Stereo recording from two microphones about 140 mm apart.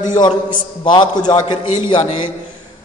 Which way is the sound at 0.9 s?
30° left (ahead or behind).